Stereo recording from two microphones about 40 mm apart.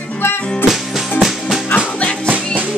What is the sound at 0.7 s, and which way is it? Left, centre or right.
Music, centre.